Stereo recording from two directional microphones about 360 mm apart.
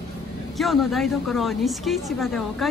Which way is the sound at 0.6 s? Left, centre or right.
Centre.